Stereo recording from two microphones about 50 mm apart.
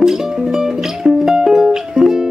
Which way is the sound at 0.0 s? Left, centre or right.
Centre.